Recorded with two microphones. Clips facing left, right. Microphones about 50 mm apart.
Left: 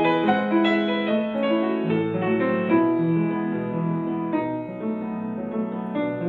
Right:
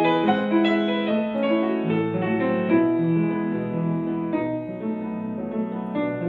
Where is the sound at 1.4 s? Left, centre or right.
Left.